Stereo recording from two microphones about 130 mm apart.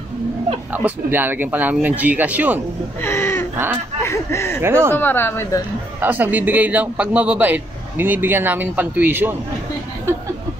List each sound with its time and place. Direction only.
0.7 s a man's voice: 15° right (ahead or behind)
3.0 s speech: 20° left (ahead or behind)
4.6 s speech: 20° right (ahead or behind)
4.9 s speech: 15° left (ahead or behind)
5.9 s a man's voice: 15° right (ahead or behind)